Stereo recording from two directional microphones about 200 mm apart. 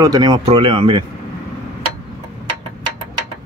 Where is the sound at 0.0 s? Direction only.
20° right (ahead or behind).